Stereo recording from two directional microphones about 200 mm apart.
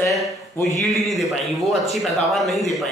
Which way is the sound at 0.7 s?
Centre (ahead or behind).